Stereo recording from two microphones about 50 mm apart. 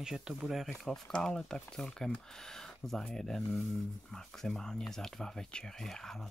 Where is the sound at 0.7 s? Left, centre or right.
Centre.